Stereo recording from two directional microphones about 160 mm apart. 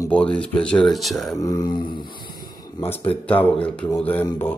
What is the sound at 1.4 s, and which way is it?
Mantra, 25° left (ahead or behind).